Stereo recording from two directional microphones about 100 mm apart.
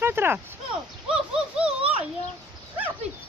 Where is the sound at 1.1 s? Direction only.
10° right (ahead or behind).